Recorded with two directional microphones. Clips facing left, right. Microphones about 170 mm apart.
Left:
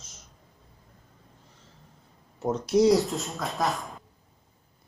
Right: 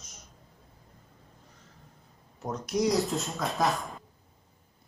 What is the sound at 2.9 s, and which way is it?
Speech, centre (ahead or behind).